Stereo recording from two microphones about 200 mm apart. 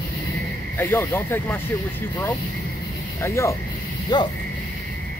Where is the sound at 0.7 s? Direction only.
10° left (ahead or behind).